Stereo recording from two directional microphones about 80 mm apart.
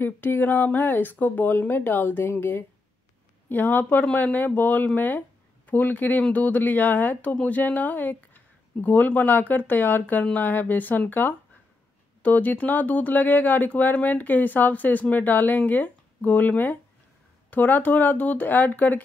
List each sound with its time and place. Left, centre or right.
0.0 s speech: left